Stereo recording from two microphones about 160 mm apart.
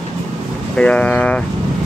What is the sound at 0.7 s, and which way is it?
Speech, 5° left (ahead or behind).